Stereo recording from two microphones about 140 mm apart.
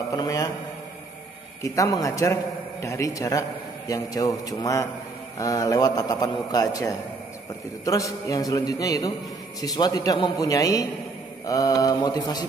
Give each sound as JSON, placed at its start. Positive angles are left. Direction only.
{"t": 0.1, "sound": "a man's voice", "side_deg": 25}
{"t": 1.6, "sound": "a man's voice", "side_deg": 25}